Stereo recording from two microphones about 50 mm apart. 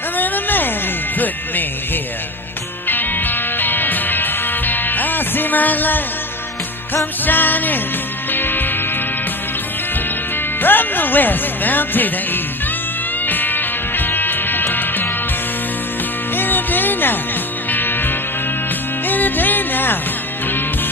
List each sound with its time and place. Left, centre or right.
0.2 s a sound: left
2.9 s music: left
7.2 s speech: left
8.3 s music: left
10.6 s speech: left
13.3 s music: left
16.3 s music: left